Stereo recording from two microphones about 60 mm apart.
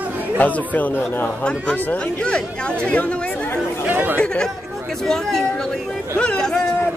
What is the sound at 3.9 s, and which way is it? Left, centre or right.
Speech, right.